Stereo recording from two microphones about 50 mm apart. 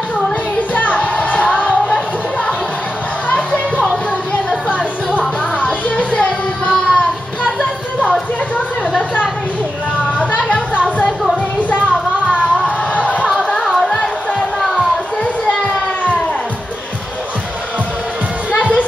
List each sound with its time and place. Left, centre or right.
0.7 s music: left
4.6 s music: left
10.1 s a sound: left
13.7 s a sound: centre
15.4 s children playing: left
18.5 s music: left